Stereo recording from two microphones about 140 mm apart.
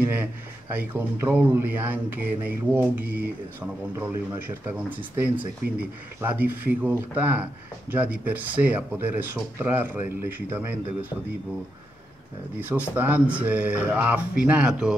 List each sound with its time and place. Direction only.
0.1 s speech: 15° right (ahead or behind)
12.5 s speech: 10° right (ahead or behind)